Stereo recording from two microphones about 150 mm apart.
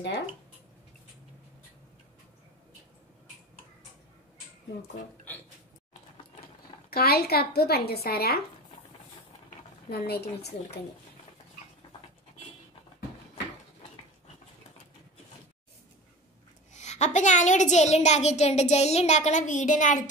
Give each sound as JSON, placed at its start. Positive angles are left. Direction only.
{"t": 6.9, "sound": "a woman's voice", "side_deg": 90}
{"t": 9.8, "sound": "a woman's voice", "side_deg": 90}
{"t": 16.7, "sound": "a woman's voice", "side_deg": 50}